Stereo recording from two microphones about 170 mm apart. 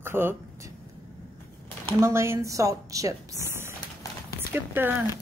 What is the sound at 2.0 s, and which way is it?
Speech, 15° right (ahead or behind).